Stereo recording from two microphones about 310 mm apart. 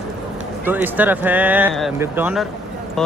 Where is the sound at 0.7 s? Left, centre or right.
Centre.